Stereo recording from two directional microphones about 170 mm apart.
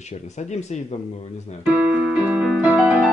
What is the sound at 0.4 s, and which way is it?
Speech, 40° left (ahead or behind).